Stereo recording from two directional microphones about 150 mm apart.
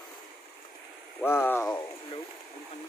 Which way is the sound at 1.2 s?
15° left (ahead or behind).